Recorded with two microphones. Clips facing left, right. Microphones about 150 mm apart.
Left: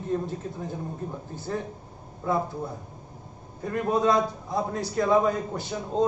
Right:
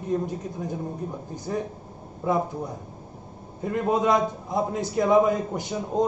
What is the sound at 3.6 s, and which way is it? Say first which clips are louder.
A man's voice: right 1 dB; 20° right (ahead or behind).